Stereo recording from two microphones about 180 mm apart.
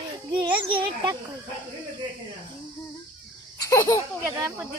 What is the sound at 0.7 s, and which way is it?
Speech, 30° right (ahead or behind).